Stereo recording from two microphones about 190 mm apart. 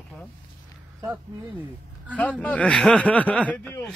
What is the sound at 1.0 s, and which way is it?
Speech, 10° right (ahead or behind).